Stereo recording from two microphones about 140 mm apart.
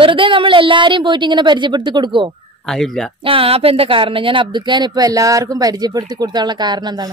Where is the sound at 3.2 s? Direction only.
40° right (ahead or behind).